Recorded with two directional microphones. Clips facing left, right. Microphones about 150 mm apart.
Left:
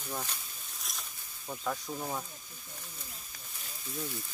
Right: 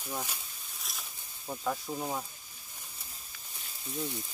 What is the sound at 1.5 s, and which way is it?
Speech, 10° right (ahead or behind).